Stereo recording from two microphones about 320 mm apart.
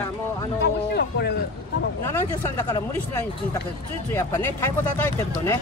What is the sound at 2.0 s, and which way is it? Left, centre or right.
Speech, centre.